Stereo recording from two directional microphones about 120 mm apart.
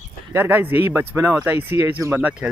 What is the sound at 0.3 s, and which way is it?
Speech, 20° right (ahead or behind).